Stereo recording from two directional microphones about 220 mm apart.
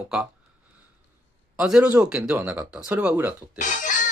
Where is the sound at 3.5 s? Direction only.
35° left (ahead or behind).